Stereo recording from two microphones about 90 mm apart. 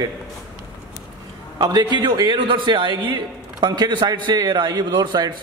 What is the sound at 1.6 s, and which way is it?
A man's voice, 55° right (ahead or behind).